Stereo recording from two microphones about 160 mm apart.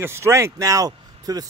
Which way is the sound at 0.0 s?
15° right (ahead or behind).